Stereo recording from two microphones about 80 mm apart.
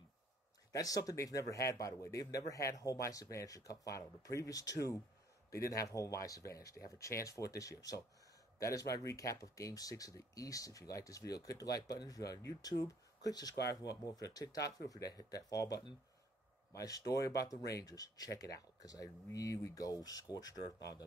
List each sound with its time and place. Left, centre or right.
0.7 s speech: left